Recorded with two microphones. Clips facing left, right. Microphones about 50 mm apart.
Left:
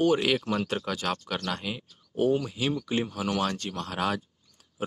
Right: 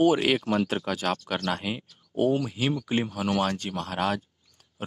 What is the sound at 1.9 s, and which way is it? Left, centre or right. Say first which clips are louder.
Speech: even; centre.